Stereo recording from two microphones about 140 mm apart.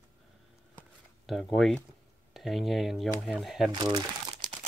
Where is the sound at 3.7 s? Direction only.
30° right (ahead or behind).